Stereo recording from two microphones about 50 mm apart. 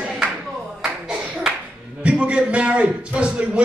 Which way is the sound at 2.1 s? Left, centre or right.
Right.